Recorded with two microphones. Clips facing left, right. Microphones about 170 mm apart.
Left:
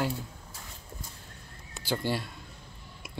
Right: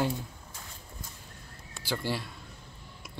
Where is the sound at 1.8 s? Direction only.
Centre (ahead or behind).